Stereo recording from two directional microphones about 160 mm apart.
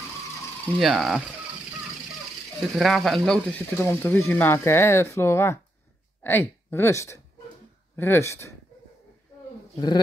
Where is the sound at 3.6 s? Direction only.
15° left (ahead or behind).